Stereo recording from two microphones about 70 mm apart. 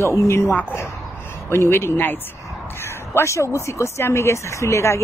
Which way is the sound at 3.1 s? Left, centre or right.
Left.